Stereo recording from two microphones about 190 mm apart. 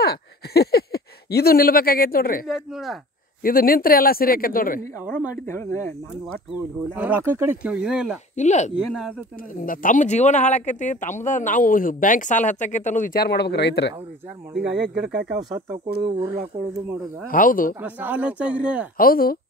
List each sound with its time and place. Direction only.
0.0 s speech: 55° left (ahead or behind)
2.4 s speech: centre (ahead or behind)
3.4 s speech: 50° left (ahead or behind)
5.5 s speech: 15° left (ahead or behind)
6.9 s speech: 10° right (ahead or behind)
8.4 s speech: 40° left (ahead or behind); by 13.9 s 65° left (ahead or behind)
14.5 s speech: centre (ahead or behind)
15.3 s speech: 20° right (ahead or behind)
17.3 s speech: 45° left (ahead or behind)
17.7 s speech: 10° right (ahead or behind)
18.9 s speech: 50° left (ahead or behind)